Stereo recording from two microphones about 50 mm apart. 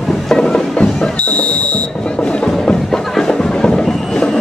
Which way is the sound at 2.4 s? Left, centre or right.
Centre.